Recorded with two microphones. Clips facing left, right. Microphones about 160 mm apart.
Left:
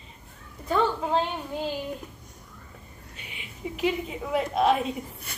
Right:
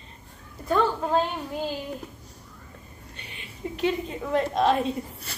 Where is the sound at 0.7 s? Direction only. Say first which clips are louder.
Right 1 dB; 5° left (ahead or behind).